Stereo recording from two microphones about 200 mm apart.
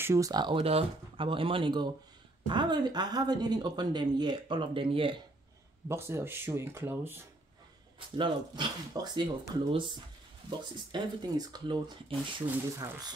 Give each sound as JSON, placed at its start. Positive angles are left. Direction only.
{"t": 0.0, "sound": "speech", "side_deg": -15}
{"t": 5.9, "sound": "speech", "side_deg": -10}